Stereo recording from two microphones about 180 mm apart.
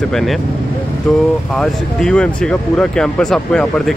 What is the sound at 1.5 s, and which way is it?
Speech, 5° left (ahead or behind).